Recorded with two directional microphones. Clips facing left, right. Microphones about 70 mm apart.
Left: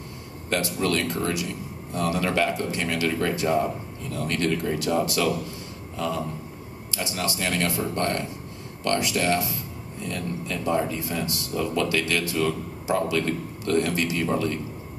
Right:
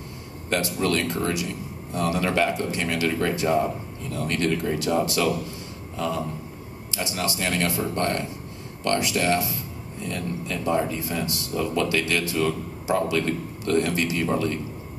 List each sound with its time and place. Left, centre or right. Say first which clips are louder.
0.5 s speech: right 1 dB; right
6.9 s speech: right 1 dB; right